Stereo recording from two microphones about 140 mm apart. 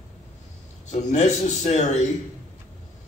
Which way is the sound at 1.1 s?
55° left (ahead or behind).